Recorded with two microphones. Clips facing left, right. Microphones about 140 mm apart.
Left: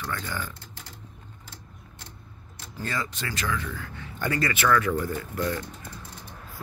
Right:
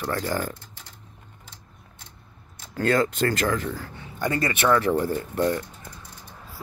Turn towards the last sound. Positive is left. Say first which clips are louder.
# right 5 dB
turn(degrees=-30)  # may be behind; listen again after turning